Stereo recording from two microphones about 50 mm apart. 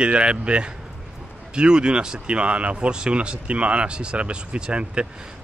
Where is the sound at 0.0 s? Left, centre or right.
Right.